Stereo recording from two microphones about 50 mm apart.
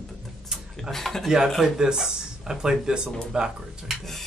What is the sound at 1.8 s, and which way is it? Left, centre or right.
Speech, centre.